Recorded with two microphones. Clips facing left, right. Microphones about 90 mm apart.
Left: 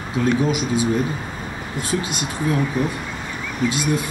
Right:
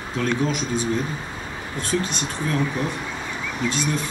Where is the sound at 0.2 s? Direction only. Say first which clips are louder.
Left 4 dB; 10° left (ahead or behind).